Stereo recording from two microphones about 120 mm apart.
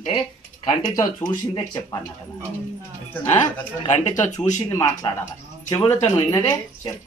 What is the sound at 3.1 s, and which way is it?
Speech, 20° left (ahead or behind).